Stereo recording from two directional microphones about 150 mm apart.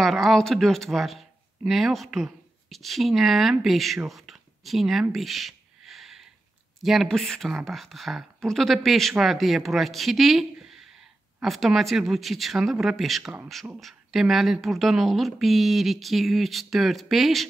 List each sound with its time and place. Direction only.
0.0 s speech: centre (ahead or behind)
5.1 s a sound: centre (ahead or behind)
6.8 s speech: centre (ahead or behind)